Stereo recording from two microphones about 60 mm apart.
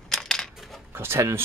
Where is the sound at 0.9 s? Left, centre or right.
Right.